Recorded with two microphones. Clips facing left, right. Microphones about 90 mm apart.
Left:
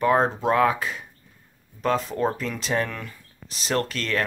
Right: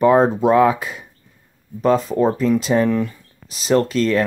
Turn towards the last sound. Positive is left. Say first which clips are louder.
# right 9 dB
turn(degrees=-10)  # may be behind; listen again after turning